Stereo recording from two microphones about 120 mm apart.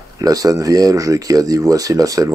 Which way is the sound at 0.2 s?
30° right (ahead or behind).